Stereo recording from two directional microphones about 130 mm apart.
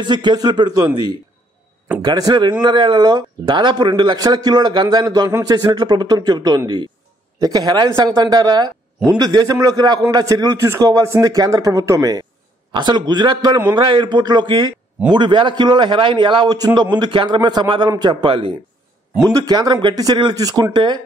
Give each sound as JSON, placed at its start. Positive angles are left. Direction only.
{"t": 0.0, "sound": "a man's voice", "side_deg": -35}
{"t": 19.2, "sound": "a man's voice", "side_deg": -30}